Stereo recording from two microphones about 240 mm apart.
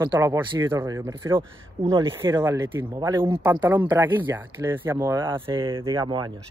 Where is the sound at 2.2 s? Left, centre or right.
Centre.